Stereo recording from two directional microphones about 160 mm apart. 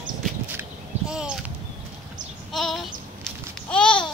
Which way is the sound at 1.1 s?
5° right (ahead or behind).